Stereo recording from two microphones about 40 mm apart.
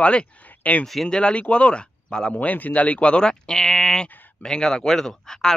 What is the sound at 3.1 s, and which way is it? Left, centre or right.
Speech, centre.